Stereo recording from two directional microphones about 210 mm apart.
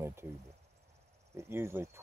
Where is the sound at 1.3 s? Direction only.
10° right (ahead or behind).